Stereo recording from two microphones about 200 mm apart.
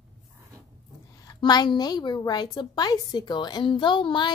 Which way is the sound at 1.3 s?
20° left (ahead or behind).